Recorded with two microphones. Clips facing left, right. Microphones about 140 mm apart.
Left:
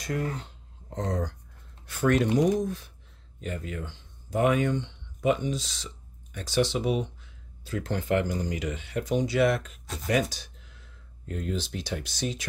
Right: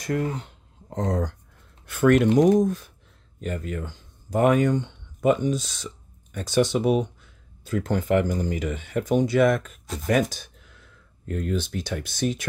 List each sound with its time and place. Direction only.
0.8 s speech: 45° right (ahead or behind)